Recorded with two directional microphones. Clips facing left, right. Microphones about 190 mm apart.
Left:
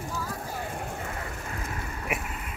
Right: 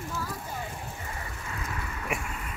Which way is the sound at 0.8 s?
60° left (ahead or behind).